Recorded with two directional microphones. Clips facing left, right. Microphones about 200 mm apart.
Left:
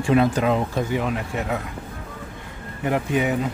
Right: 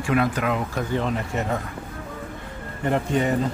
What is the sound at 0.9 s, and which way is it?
Speech, 5° left (ahead or behind).